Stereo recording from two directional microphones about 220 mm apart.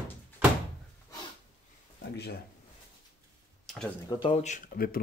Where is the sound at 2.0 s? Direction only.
50° left (ahead or behind).